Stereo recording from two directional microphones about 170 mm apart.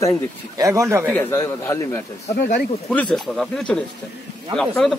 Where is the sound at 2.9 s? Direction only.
5° left (ahead or behind).